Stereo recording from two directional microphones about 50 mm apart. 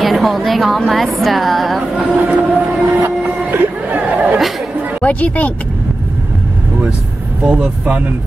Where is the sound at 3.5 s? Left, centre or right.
Right.